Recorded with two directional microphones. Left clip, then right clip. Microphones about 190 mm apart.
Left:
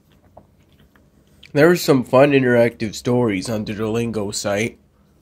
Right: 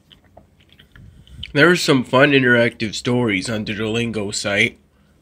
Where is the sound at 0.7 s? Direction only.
5° left (ahead or behind).